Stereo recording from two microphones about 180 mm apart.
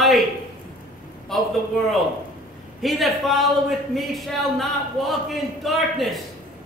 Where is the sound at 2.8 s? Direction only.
Centre (ahead or behind).